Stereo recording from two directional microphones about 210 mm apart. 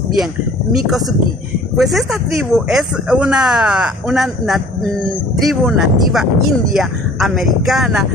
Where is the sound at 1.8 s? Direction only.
Centre (ahead or behind).